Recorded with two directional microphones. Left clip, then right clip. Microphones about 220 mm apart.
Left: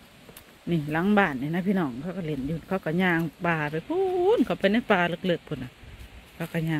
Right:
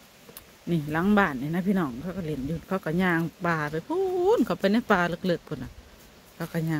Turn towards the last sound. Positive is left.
turn(degrees=10)  # may be behind; listen again after turning